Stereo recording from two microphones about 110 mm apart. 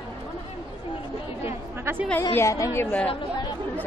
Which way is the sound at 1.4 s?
20° right (ahead or behind).